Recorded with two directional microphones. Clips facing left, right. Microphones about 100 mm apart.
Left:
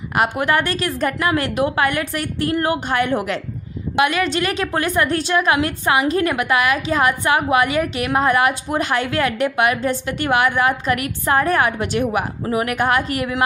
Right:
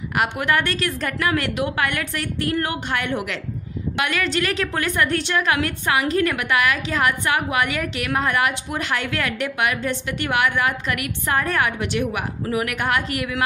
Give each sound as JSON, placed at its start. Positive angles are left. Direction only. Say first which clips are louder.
{"t": 0.1, "sound": "a woman's voice", "louder": "left 3 dB", "side_deg": 30}
{"t": 3.9, "sound": "a woman's voice", "louder": "left 5 dB", "side_deg": 25}